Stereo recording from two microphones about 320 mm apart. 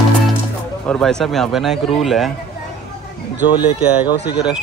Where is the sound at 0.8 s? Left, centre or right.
Centre.